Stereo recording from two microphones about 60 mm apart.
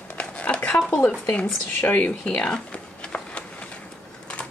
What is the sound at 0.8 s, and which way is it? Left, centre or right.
Speech, left.